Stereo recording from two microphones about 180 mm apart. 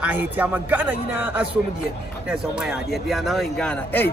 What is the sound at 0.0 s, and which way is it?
A man's voice, 10° right (ahead or behind).